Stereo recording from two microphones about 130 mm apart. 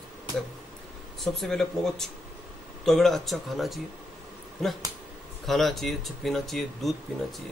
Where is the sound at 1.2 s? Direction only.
5° left (ahead or behind).